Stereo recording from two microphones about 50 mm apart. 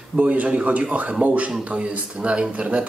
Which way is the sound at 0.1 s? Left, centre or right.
Right.